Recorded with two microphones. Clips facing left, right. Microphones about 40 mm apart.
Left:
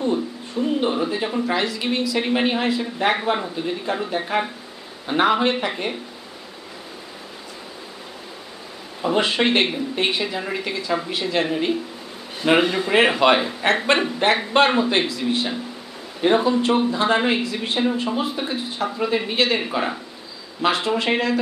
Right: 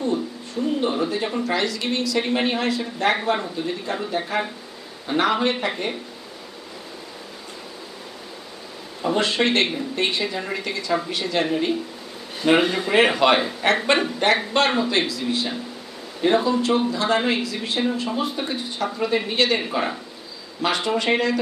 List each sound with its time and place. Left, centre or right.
0.0 s speech: centre
9.0 s speech: centre
14.9 s speech: left
16.2 s speech: centre